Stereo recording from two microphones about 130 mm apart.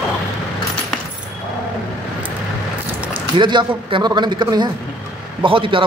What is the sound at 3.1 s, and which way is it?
A man's voice, 35° right (ahead or behind).